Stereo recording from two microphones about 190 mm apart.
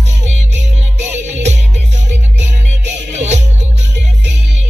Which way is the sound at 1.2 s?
40° right (ahead or behind).